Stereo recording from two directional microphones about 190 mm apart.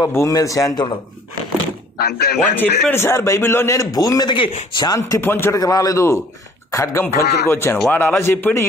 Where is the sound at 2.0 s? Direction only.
60° left (ahead or behind).